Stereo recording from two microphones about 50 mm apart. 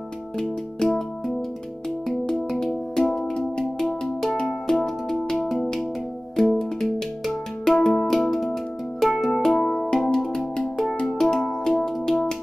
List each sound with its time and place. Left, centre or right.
0.4 s music: centre
2.6 s music: centre
4.5 s music: centre